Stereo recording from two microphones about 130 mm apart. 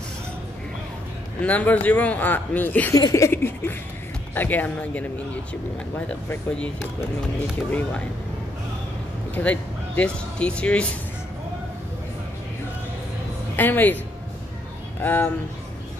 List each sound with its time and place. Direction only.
1.4 s speech: 10° left (ahead or behind)
2.9 s a sound: 25° left (ahead or behind)
4.4 s speech: 15° left (ahead or behind)
9.3 s speech: 10° left (ahead or behind)
13.6 s speech: 15° left (ahead or behind)
15.0 s speech: 15° left (ahead or behind)